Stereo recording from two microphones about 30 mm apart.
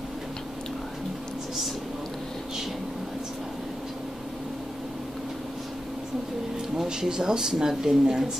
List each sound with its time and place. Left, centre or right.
6.9 s speech: right